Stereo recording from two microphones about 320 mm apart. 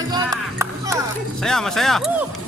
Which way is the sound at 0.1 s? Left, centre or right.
Centre.